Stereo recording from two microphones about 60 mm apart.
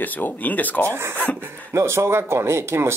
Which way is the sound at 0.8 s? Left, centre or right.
Right.